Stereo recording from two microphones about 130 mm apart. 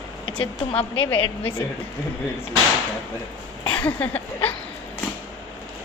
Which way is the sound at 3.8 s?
15° left (ahead or behind).